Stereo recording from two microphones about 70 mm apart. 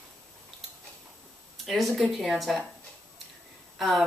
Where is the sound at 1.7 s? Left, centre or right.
Centre.